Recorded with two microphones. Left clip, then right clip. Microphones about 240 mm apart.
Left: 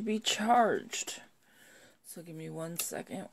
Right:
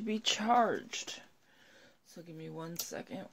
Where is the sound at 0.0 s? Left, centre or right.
Centre.